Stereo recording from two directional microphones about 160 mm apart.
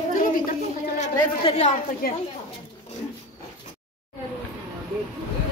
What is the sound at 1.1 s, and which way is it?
Speech, 40° left (ahead or behind).